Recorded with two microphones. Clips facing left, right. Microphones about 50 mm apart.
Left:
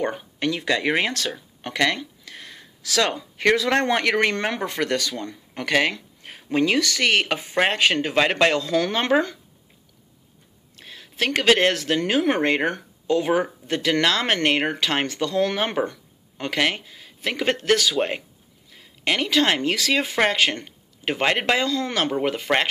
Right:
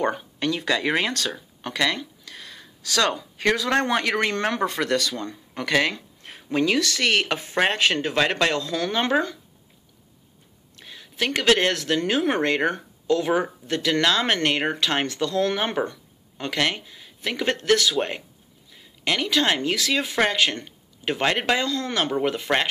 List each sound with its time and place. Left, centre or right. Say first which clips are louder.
0.4 s speech: left 2 dB; left
1.6 s a sound: left 2 dB; left
3.2 s speech: left 3 dB; left
10.9 s speech: left 2 dB; left
14.0 s speech: left 1 dB; left